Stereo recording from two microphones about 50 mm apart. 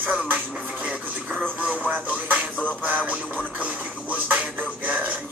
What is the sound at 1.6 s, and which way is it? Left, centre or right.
Music, right.